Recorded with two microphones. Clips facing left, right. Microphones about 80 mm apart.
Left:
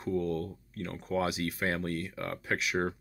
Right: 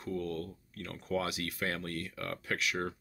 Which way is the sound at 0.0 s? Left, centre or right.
Centre.